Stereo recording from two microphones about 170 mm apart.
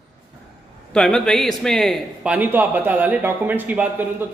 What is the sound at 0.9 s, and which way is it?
A man's voice, 5° left (ahead or behind).